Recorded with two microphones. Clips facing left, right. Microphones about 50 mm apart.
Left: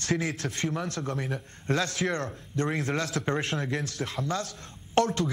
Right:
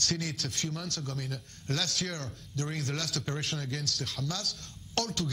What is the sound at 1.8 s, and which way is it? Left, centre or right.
Speech, centre.